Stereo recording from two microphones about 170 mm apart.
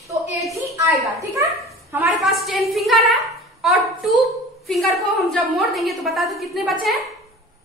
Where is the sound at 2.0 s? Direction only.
Centre (ahead or behind).